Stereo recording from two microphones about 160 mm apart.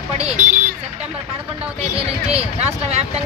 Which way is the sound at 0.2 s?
40° right (ahead or behind).